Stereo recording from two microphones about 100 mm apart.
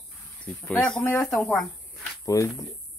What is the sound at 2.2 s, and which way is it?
Speech, 30° left (ahead or behind).